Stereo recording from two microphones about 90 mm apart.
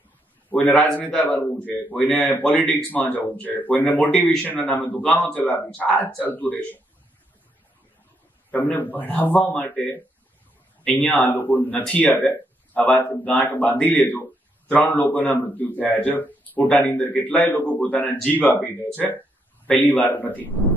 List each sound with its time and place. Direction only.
0.5 s a sound: 20° left (ahead or behind)
0.7 s a man's voice: 5° left (ahead or behind)
1.0 s a man's voice: 20° left (ahead or behind)
8.5 s a man's voice: 20° left (ahead or behind)
10.8 s a man's voice: 15° left (ahead or behind)